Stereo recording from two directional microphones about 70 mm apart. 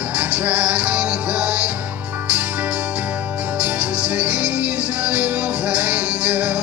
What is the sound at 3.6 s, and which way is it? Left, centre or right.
Music, centre.